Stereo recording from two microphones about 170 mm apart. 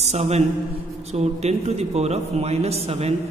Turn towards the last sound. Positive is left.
turn(degrees=-35)  # may be behind; listen again after turning